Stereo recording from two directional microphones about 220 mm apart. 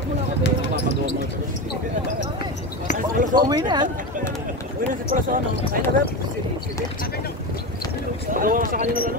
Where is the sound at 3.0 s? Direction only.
35° right (ahead or behind).